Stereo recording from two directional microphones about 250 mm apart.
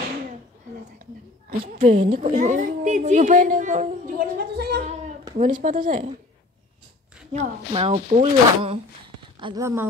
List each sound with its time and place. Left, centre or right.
1.6 s a woman's voice: right
7.3 s speech: right